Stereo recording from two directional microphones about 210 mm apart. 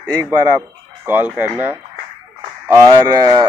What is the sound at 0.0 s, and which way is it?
Speech, 10° right (ahead or behind).